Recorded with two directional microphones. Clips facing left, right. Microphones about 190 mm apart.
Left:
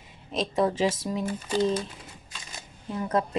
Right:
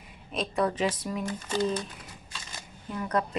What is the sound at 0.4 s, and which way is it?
Speech, 25° left (ahead or behind).